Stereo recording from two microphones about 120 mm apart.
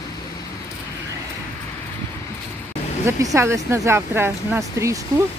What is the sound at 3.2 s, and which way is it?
Speech, 25° right (ahead or behind).